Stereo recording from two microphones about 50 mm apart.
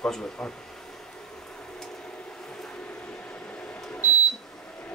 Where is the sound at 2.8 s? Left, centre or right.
Left.